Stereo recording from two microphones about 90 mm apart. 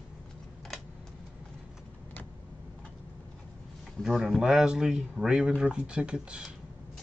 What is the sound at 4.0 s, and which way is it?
Speech, 5° right (ahead or behind).